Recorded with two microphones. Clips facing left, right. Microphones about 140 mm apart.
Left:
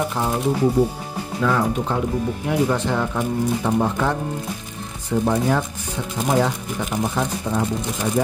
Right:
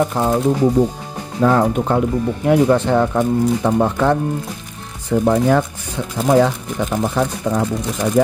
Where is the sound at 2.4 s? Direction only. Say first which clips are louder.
Right 8 dB; 60° right (ahead or behind).